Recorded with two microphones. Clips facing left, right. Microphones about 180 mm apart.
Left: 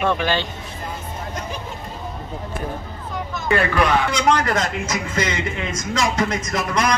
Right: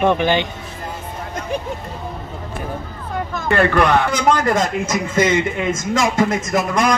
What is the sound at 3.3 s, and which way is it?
Speech, 55° right (ahead or behind).